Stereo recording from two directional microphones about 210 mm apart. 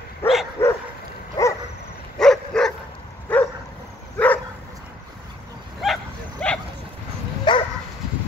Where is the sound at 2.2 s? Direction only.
5° left (ahead or behind).